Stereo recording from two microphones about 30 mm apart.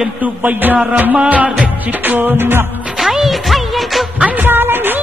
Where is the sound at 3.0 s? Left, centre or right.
Centre.